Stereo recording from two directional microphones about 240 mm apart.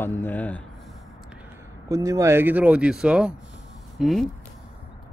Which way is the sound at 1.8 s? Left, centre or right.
Centre.